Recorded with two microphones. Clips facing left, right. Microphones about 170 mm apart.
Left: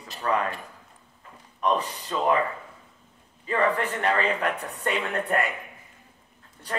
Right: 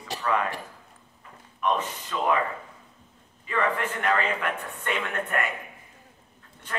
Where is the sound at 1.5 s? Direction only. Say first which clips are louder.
Left 1 dB; 35° left (ahead or behind).